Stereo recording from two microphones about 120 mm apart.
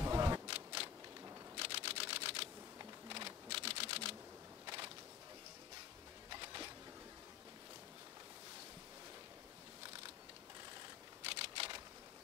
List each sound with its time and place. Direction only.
0.0 s camera: 30° right (ahead or behind)
1.6 s camera: 50° right (ahead or behind)
2.8 s typing: 40° right (ahead or behind)
4.6 s a sound: 40° right (ahead or behind)
6.3 s a sound: 40° right (ahead or behind)
11.2 s camera: 50° right (ahead or behind)